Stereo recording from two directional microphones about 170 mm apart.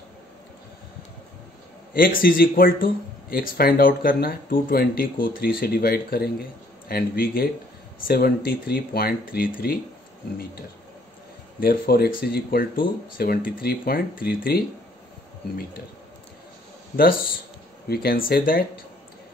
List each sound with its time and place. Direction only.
2.0 s speech: 55° left (ahead or behind)
8.5 s speech: 65° left (ahead or behind)
11.6 s speech: 60° left (ahead or behind)
16.9 s speech: 60° left (ahead or behind)